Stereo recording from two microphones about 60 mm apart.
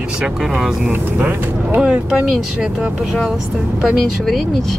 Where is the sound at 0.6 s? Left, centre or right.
Centre.